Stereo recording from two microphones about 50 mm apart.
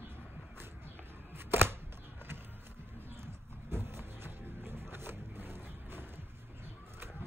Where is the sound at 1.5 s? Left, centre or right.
Right.